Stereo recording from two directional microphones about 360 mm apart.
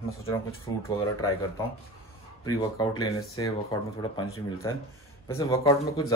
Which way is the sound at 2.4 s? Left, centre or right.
Centre.